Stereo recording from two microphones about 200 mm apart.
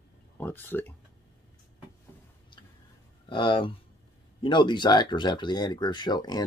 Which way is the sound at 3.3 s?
25° left (ahead or behind).